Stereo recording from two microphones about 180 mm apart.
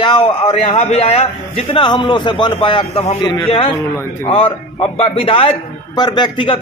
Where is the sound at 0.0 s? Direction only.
30° left (ahead or behind).